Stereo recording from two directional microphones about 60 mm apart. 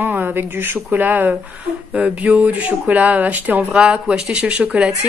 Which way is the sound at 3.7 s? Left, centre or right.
Centre.